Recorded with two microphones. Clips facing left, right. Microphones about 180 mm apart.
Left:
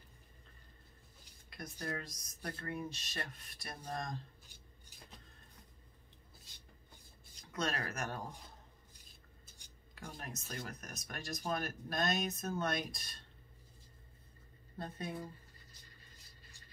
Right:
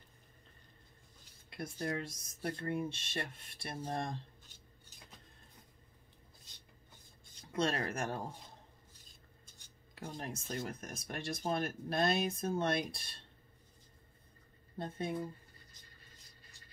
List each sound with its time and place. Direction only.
1.5 s speech: 25° right (ahead or behind)
7.5 s speech: 30° right (ahead or behind)
9.9 s speech: 25° right (ahead or behind)
14.8 s speech: 25° right (ahead or behind)